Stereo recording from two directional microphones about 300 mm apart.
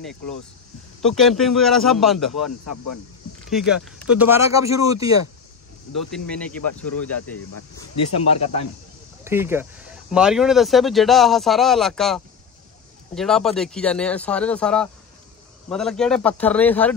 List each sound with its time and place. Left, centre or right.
1.0 s speech: centre
2.6 s speech: left
3.5 s speech: centre
6.1 s speech: centre
6.7 s speech: left
8.1 s speech: left
9.2 s speech: centre